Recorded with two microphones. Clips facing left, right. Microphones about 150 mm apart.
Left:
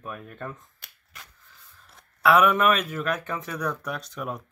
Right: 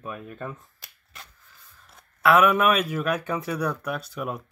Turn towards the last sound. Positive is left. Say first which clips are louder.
# right 2 dB
turn(degrees=-5)  # may be behind; listen again after turning